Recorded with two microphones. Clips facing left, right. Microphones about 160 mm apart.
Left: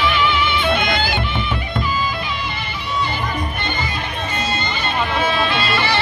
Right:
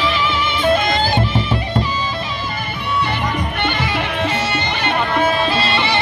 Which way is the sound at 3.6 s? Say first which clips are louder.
Right 5 dB; 75° right (ahead or behind).